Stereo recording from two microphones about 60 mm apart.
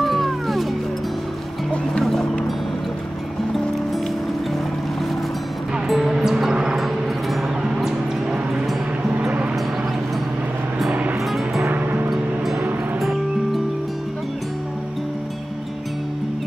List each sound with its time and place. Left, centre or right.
0.0 s music: centre
5.9 s music: centre
6.8 s vehicle: centre
11.1 s music: centre
11.7 s music: right